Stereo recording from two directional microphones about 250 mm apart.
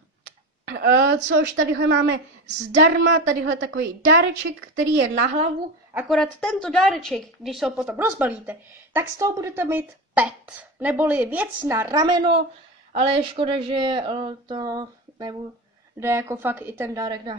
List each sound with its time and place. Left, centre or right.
0.7 s a woman's voice: right
2.4 s speech: right
3.0 s a woman's voice: right
5.9 s a woman's voice: centre